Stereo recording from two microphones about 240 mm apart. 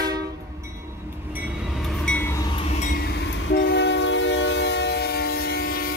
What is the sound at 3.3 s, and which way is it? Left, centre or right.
Train, left.